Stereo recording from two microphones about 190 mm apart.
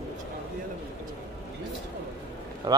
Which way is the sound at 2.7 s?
25° right (ahead or behind).